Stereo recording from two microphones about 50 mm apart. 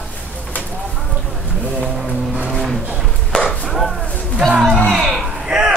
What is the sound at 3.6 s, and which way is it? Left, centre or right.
Chopping, centre.